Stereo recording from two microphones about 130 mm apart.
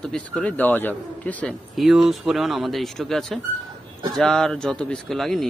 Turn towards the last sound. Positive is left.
turn(degrees=5)  # may be behind; listen again after turning